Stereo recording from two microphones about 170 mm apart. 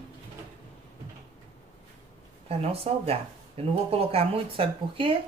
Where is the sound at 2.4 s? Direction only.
35° right (ahead or behind).